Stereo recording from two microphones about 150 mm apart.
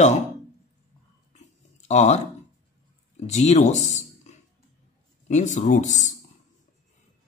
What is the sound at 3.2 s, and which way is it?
Speech, 50° left (ahead or behind).